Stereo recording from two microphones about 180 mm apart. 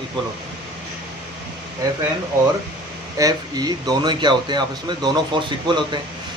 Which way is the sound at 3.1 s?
20° right (ahead or behind).